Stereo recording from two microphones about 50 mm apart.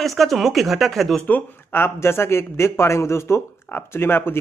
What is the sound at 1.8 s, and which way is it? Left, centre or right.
Speech, left.